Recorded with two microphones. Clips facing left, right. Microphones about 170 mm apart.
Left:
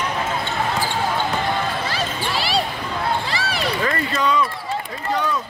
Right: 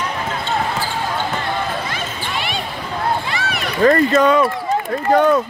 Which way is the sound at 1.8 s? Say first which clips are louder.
Left 1 dB; 35° left (ahead or behind).